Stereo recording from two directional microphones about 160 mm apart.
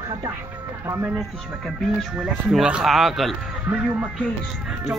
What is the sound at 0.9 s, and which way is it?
Speech, 10° right (ahead or behind).